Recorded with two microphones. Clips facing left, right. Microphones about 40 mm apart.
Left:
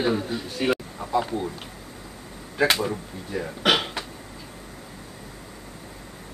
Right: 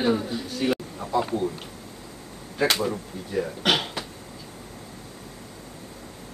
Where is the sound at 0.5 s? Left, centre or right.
Centre.